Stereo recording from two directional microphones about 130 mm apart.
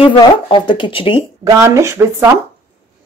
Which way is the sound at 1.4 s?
20° right (ahead or behind).